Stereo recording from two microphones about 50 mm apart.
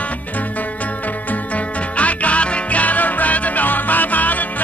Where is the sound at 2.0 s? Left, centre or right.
Left.